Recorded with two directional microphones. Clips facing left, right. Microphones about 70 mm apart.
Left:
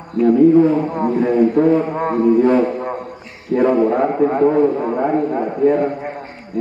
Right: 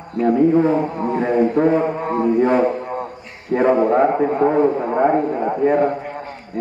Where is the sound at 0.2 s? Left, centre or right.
Right.